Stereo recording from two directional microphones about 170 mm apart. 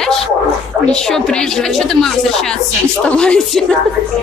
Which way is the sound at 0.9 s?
5° left (ahead or behind).